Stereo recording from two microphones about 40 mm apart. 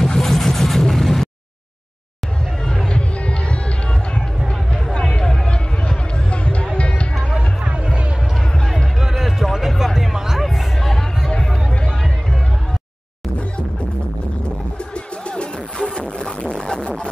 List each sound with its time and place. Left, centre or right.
0.0 s vehicle: centre
2.9 s music: left
5.1 s music: centre
7.3 s music: right
9.0 s a sound: centre
10.4 s hubbub: centre
15.3 s music: left